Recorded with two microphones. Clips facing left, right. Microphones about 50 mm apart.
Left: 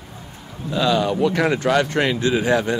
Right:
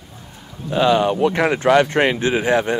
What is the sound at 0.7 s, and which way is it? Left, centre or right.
Speech, right.